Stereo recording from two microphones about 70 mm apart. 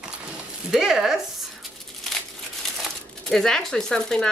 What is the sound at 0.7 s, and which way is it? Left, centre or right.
Speech, centre.